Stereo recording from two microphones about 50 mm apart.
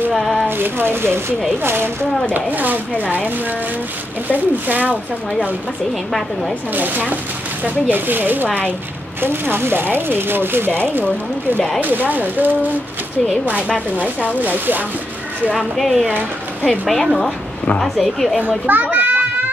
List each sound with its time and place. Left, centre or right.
0.1 s a sound: centre
0.5 s speech: right
2.3 s speech: right
4.3 s speech: right
6.7 s speech: right
11.8 s speech: right
13.9 s speech: right
15.5 s a woman's voice: centre
18.7 s children playing: right